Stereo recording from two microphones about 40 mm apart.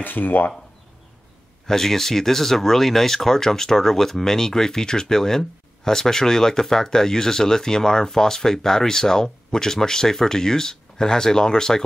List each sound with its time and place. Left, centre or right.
0.0 s speech: left
1.7 s speech: centre